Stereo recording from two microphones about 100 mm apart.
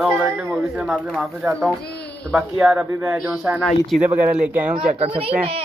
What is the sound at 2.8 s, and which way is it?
Speech, 20° right (ahead or behind).